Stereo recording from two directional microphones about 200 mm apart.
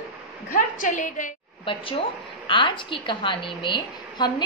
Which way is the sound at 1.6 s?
25° left (ahead or behind).